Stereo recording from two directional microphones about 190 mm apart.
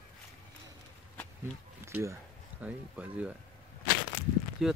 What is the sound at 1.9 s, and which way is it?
Speech, 10° right (ahead or behind).